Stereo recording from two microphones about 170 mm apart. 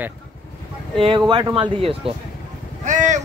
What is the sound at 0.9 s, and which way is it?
Speech, 30° right (ahead or behind).